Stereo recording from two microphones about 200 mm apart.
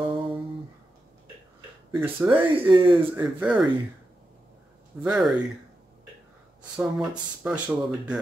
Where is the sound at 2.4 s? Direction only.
25° right (ahead or behind).